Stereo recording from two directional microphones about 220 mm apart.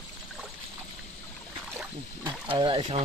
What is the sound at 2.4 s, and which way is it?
Speech, 25° right (ahead or behind).